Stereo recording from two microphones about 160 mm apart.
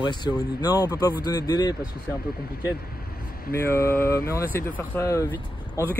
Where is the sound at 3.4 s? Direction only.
70° left (ahead or behind).